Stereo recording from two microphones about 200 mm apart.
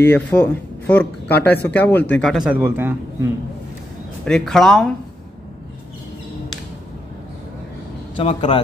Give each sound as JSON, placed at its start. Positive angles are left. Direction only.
{"t": 0.0, "sound": "a man's voice", "side_deg": 10}
{"t": 4.2, "sound": "a man's voice", "side_deg": 5}
{"t": 8.2, "sound": "speech", "side_deg": 30}